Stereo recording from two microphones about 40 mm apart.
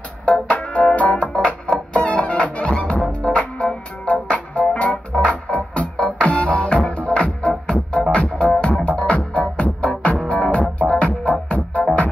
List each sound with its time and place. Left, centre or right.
0.2 s music: left
1.3 s music: centre
2.0 s music: left